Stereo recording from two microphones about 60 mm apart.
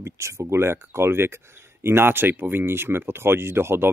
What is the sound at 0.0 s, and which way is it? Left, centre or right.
Speech, right.